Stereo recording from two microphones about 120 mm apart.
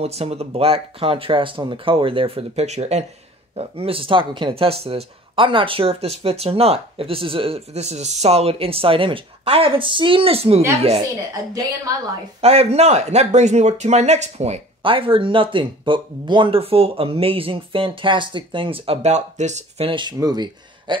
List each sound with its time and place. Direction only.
0.0 s speech: 60° right (ahead or behind)
3.5 s speech: 55° right (ahead or behind)
12.4 s speech: 60° right (ahead or behind)
14.8 s speech: 45° right (ahead or behind)
19.0 s speech: 75° right (ahead or behind)
19.9 s speech: 40° right (ahead or behind)